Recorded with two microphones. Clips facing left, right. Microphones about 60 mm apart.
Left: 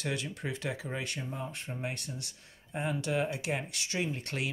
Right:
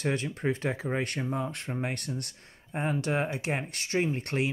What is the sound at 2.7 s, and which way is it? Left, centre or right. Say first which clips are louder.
Speech: right 3 dB; right.